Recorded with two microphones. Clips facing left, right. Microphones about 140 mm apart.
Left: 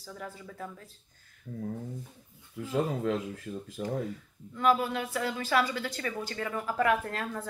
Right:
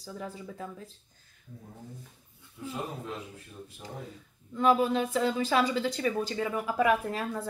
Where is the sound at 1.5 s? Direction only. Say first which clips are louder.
Left 10 dB; 65° left (ahead or behind).